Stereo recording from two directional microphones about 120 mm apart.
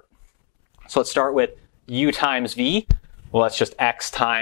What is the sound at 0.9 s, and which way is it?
Speech, 5° right (ahead or behind).